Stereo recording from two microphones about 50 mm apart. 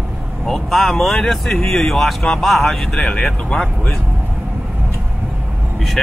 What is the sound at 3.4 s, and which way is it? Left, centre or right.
Speech, left.